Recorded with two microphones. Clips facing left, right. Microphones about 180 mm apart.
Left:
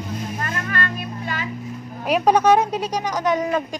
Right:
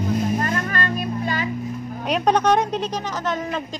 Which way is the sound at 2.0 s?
5° left (ahead or behind).